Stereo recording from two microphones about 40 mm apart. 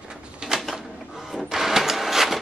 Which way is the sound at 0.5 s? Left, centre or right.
Centre.